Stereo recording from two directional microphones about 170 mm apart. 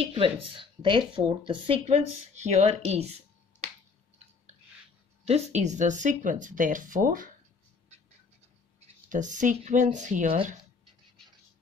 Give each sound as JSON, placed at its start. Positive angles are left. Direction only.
{"t": 0.0, "sound": "speech", "side_deg": -30}
{"t": 5.2, "sound": "speech", "side_deg": -40}
{"t": 8.8, "sound": "speech", "side_deg": -45}